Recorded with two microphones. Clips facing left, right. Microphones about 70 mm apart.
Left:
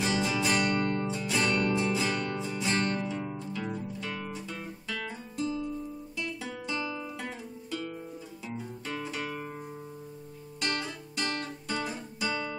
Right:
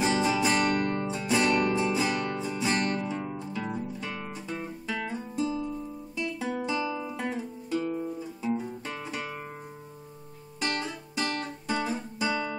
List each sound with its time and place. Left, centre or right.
0.0 s music: right
6.7 s guitar: centre
8.5 s music: centre
10.6 s music: centre